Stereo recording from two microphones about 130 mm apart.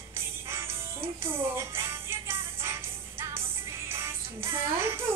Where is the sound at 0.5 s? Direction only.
20° right (ahead or behind).